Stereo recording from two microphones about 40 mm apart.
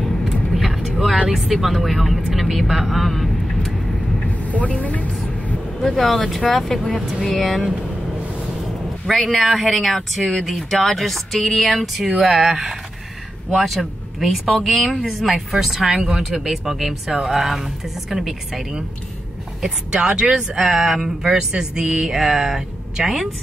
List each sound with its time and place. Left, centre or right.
0.2 s vehicle: centre
1.3 s speech: centre
4.5 s speech: left
5.9 s speech: centre
9.0 s speech: centre
19.9 s speech: right
20.5 s speech: centre